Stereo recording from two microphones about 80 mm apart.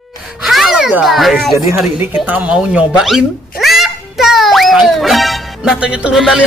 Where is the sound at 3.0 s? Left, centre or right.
Centre.